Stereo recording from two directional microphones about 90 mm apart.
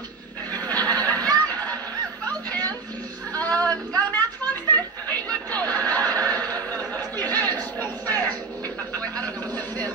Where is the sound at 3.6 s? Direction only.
45° right (ahead or behind).